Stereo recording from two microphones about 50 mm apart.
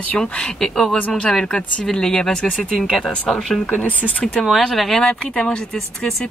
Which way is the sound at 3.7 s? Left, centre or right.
Left.